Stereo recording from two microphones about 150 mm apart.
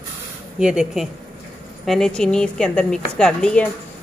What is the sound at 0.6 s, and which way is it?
A woman's voice, 5° right (ahead or behind).